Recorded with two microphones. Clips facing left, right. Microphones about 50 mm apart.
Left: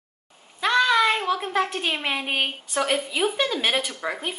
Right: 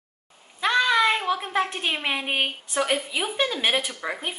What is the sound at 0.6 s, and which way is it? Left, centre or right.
Speech, centre.